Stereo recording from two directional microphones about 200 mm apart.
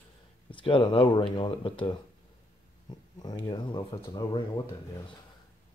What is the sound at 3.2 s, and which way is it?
Speech, 20° left (ahead or behind).